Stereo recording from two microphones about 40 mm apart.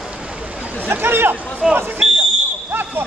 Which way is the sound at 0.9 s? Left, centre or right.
Right.